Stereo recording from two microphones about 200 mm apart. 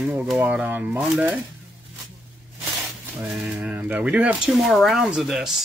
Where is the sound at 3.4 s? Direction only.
5° right (ahead or behind).